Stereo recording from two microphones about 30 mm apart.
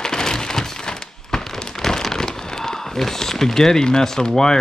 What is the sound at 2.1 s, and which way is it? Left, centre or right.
Speech, centre.